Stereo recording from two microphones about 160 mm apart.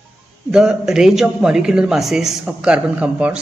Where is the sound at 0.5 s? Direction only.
5° right (ahead or behind).